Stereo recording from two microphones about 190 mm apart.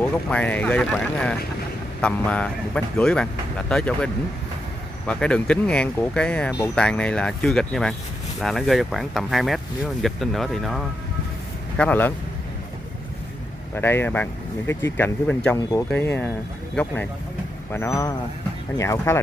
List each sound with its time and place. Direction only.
0.0 s speech: 10° left (ahead or behind)
13.7 s speech: 10° left (ahead or behind)